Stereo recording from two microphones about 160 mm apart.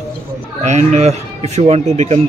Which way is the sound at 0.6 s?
45° right (ahead or behind).